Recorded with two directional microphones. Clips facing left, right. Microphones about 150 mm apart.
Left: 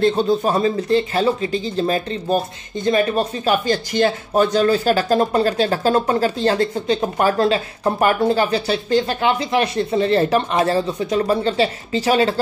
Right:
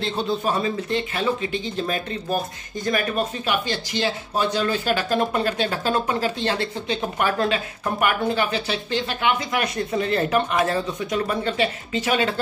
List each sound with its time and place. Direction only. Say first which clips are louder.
0.0 s speech: left 7 dB; 40° left (ahead or behind)
3.6 s speech: left 7 dB; 50° left (ahead or behind)